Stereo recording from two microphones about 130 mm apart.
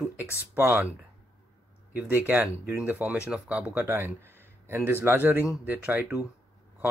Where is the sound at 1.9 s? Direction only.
15° right (ahead or behind).